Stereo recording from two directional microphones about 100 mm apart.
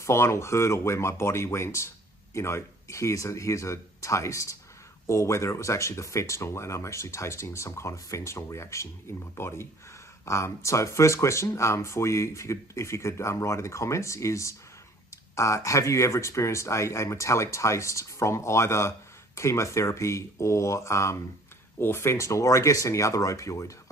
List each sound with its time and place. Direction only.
0.0 s speech: 30° left (ahead or behind)